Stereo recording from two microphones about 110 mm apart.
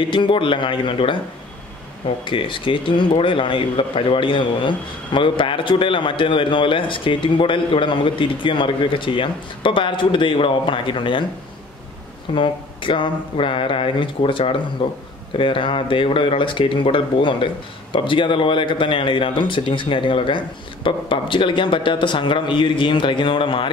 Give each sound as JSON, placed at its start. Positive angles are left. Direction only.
{"t": 0.1, "sound": "speech", "side_deg": 50}
{"t": 2.2, "sound": "speech", "side_deg": 50}
{"t": 12.4, "sound": "speech", "side_deg": 50}